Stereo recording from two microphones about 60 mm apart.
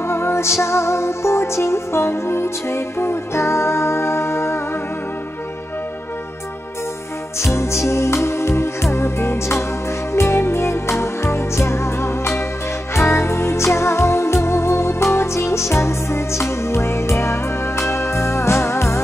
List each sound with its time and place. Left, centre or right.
0.0 s music: left
7.3 s music: left